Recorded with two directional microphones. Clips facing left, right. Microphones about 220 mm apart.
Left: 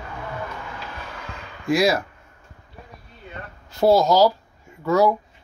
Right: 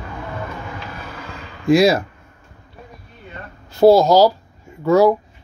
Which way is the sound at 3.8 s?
35° right (ahead or behind).